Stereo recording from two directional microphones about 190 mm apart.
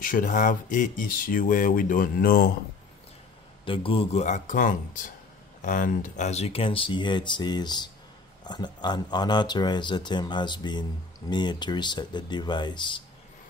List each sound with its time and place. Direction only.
0.0 s speech: 45° left (ahead or behind)
3.6 s speech: 30° left (ahead or behind)